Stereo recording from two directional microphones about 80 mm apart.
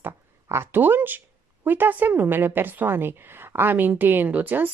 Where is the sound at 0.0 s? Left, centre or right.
Right.